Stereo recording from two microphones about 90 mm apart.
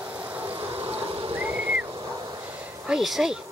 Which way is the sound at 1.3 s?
20° right (ahead or behind).